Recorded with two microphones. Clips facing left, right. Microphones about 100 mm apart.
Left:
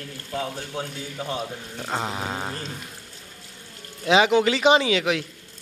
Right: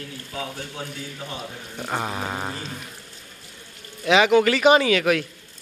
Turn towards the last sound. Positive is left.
turn(degrees=20)  # may be behind; listen again after turning